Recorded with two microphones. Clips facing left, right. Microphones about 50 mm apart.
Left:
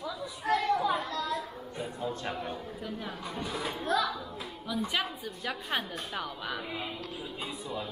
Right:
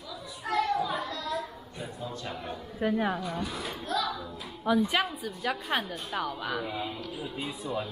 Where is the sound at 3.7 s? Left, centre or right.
Left.